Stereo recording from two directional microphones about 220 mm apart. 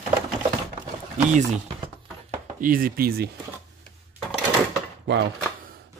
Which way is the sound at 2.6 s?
40° right (ahead or behind).